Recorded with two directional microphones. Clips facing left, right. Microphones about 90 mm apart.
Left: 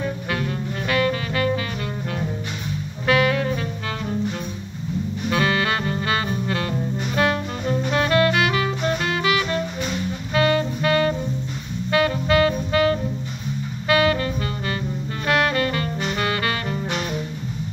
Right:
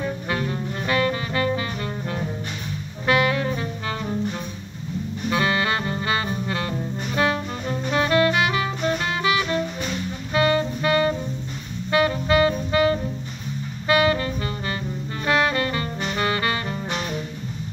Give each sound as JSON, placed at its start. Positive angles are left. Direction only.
{"t": 0.3, "sound": "music", "side_deg": -20}
{"t": 3.1, "sound": "music", "side_deg": -15}
{"t": 5.3, "sound": "music", "side_deg": -20}
{"t": 7.6, "sound": "music", "side_deg": 0}
{"t": 7.9, "sound": "music", "side_deg": -20}
{"t": 9.6, "sound": "music", "side_deg": 0}
{"t": 10.3, "sound": "music", "side_deg": -20}